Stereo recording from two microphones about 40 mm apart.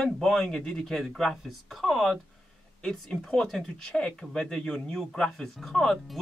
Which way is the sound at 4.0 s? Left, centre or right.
Left.